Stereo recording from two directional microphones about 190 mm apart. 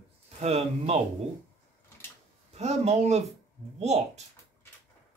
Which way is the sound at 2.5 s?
35° right (ahead or behind).